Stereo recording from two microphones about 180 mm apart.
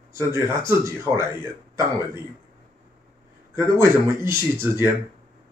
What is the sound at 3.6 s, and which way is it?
Speech, 15° right (ahead or behind).